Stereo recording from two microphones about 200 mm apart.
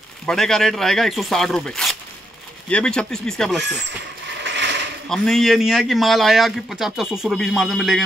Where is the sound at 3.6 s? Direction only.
60° right (ahead or behind).